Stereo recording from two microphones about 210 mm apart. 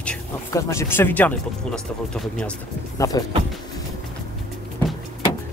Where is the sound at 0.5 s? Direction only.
15° left (ahead or behind).